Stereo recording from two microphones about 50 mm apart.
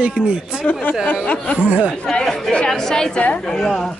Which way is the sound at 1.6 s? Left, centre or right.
Right.